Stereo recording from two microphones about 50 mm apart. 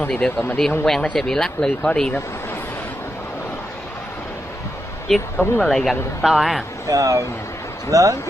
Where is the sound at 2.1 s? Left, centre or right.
Left.